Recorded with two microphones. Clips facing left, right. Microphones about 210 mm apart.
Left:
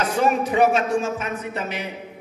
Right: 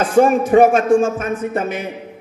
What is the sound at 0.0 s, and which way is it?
A man's voice, 50° right (ahead or behind).